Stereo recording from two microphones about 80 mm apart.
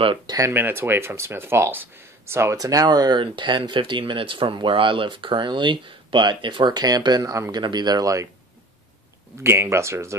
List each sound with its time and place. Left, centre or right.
0.5 s speech: right
2.5 s speech: right
7.5 s speech: right
9.4 s speech: right